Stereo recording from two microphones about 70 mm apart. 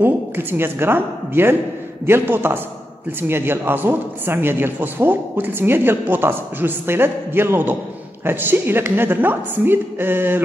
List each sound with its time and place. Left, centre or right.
0.0 s a man's voice: right